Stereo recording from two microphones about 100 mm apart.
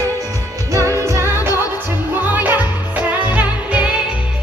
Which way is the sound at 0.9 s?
30° right (ahead or behind).